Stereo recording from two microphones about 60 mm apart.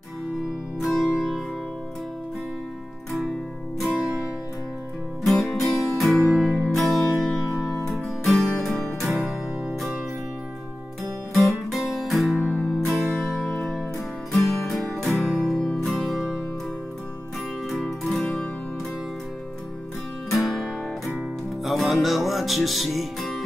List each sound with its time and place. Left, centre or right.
0.7 s music: centre
3.1 s music: centre
5.2 s music: centre
11.3 s music: centre
12.4 s music: left
13.2 s music: centre
17.6 s music: centre
20.2 s music: centre